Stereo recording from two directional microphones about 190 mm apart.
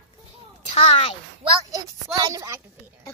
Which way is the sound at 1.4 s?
20° right (ahead or behind).